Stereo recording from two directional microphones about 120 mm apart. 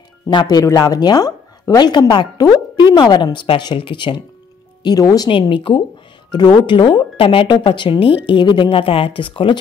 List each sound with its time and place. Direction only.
0.3 s speech: 35° left (ahead or behind)
4.8 s speech: 30° left (ahead or behind)
5.3 s speech: 45° left (ahead or behind)